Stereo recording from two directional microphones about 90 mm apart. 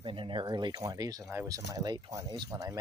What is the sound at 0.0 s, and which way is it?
Speech, 70° right (ahead or behind).